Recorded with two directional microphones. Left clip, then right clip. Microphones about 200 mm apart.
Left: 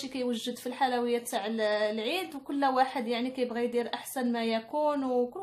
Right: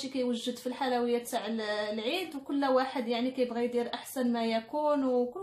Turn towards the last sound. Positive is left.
turn(degrees=35)  # may be behind; listen again after turning